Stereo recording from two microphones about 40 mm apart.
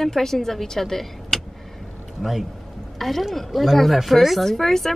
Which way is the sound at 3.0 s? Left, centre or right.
Centre.